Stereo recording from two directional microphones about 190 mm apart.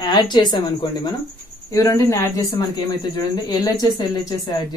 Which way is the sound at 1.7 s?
15° left (ahead or behind).